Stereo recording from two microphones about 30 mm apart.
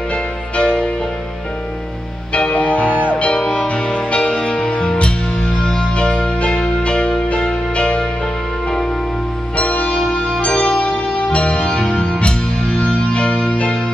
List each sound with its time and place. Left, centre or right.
0.1 s music: left
2.5 s music: left
2.9 s music: right
3.5 s music: left
6.4 s music: left
9.6 s music: left
9.8 s music: left
10.4 s music: left
11.6 s music: left